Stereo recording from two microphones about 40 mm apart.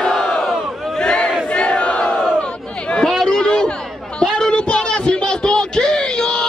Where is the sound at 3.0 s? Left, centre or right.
Centre.